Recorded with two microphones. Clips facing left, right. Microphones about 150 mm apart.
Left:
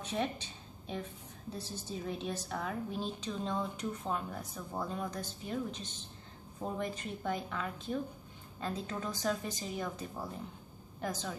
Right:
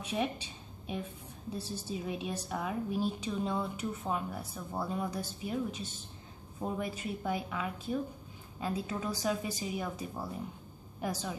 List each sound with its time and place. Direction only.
0.0 s a woman's voice: 10° right (ahead or behind)